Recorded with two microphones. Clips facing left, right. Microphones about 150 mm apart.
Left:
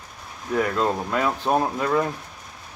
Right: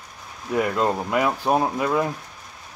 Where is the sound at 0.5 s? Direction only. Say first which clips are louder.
Right 1 dB; 15° right (ahead or behind).